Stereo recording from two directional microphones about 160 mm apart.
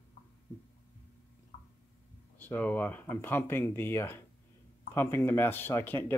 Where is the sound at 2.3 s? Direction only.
10° left (ahead or behind).